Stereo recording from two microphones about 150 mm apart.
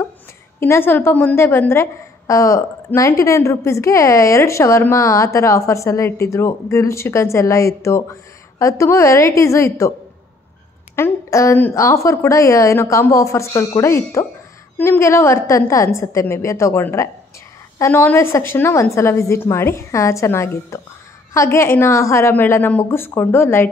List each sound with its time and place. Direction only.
0.6 s a woman's voice: 15° left (ahead or behind)
11.0 s a woman's voice: 20° left (ahead or behind)